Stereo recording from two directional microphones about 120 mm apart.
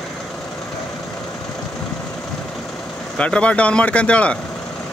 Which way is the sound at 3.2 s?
10° left (ahead or behind).